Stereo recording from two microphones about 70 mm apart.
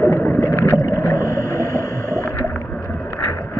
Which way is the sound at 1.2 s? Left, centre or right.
Right.